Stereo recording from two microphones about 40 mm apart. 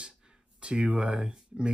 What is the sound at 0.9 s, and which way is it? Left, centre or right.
Speech, right.